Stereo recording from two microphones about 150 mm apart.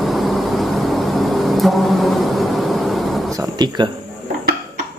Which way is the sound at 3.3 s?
25° right (ahead or behind).